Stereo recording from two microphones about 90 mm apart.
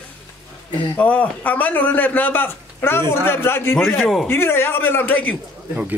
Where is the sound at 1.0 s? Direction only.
15° left (ahead or behind).